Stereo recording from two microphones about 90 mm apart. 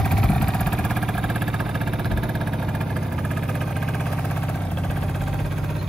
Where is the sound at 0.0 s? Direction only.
5° left (ahead or behind).